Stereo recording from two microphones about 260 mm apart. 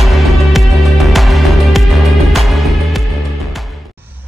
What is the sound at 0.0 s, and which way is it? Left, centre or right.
Music, centre.